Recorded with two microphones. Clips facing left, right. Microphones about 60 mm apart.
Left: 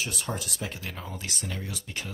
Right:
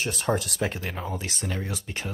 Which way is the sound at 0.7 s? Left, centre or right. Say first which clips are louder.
Right 6 dB; right.